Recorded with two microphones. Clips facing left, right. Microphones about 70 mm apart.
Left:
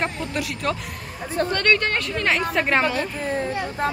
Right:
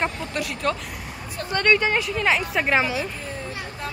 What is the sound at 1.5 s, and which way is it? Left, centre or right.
A woman's voice, centre.